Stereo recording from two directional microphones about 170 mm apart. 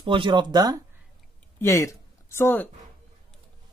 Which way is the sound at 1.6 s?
15° left (ahead or behind).